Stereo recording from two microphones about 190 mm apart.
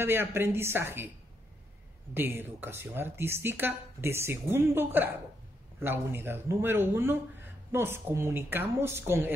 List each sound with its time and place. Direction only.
0.0 s speech: 10° right (ahead or behind)
2.1 s speech: 10° right (ahead or behind)